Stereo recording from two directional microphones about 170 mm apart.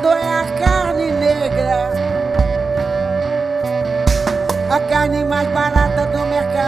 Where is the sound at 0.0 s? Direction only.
Centre (ahead or behind).